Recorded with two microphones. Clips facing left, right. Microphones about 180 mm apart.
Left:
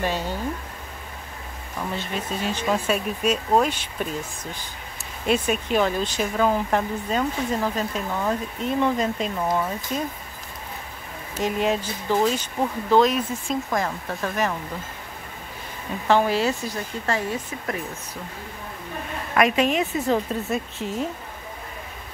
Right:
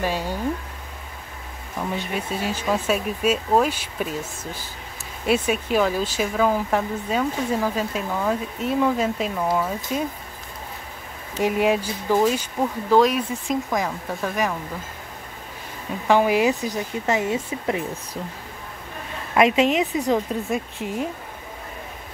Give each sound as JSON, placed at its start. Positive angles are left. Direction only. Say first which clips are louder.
{"t": 0.0, "sound": "speech", "louder": "right 1 dB", "side_deg": -10}
{"t": 1.8, "sound": "speech", "louder": "right 2 dB", "side_deg": -10}
{"t": 5.2, "sound": "speech", "louder": "right 1 dB", "side_deg": -5}
{"t": 11.3, "sound": "speech", "louder": "right 3 dB", "side_deg": -10}
{"t": 16.1, "sound": "speech", "louder": "right 2 dB", "side_deg": -15}
{"t": 19.3, "sound": "speech", "louder": "right 2 dB", "side_deg": -25}